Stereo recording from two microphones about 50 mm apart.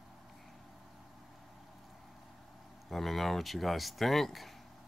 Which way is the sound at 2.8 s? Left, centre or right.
Centre.